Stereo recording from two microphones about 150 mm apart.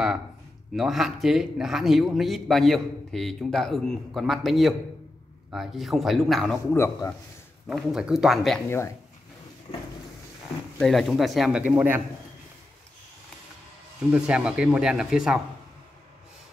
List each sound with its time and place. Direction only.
0.7 s a man's voice: centre (ahead or behind)
6.7 s a man's voice: 20° left (ahead or behind)
7.6 s a man's voice: centre (ahead or behind)
8.6 s speech: 15° left (ahead or behind)
10.8 s a man's voice: centre (ahead or behind)
11.7 s a man's voice: 15° right (ahead or behind)
14.1 s a man's voice: 5° right (ahead or behind)